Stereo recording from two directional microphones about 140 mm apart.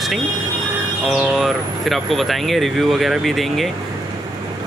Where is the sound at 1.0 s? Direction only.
Centre (ahead or behind).